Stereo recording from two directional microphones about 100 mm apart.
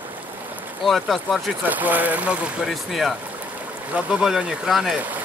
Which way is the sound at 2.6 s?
Centre (ahead or behind).